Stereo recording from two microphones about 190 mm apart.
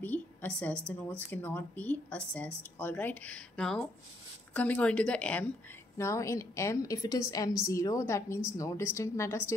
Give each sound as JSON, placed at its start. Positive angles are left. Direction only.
{"t": 0.0, "sound": "a woman's voice", "side_deg": 10}